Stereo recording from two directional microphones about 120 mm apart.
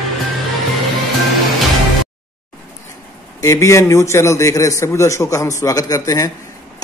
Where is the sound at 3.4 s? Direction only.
25° left (ahead or behind).